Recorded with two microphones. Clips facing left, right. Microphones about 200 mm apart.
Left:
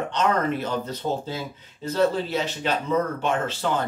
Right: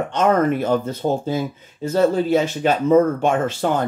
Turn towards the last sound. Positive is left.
turn(degrees=-50)  # may be behind; listen again after turning